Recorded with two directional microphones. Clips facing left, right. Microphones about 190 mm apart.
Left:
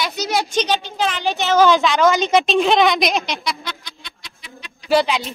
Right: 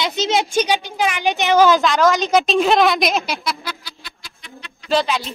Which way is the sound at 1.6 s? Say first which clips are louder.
Left 1 dB; centre (ahead or behind).